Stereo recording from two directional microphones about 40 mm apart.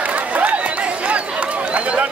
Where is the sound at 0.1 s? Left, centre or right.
Right.